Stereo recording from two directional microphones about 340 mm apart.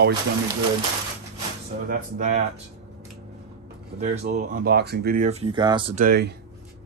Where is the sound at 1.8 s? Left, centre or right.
Right.